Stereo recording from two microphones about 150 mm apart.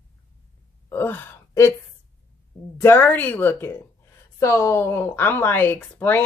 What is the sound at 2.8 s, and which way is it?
Speech, 15° left (ahead or behind).